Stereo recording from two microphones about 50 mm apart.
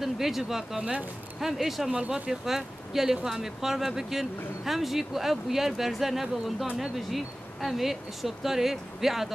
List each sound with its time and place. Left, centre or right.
0.0 s speech: centre
1.9 s speech: right
2.4 s speech: centre